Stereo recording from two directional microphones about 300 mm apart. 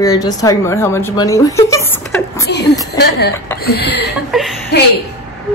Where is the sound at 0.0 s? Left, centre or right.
Centre.